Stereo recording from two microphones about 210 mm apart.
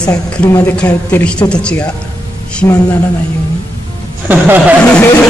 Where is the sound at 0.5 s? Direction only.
10° left (ahead or behind).